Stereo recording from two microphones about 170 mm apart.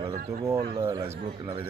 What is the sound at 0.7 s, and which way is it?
Speech, 20° right (ahead or behind).